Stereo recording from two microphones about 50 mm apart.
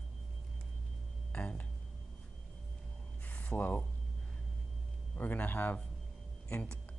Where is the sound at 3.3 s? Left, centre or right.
Left.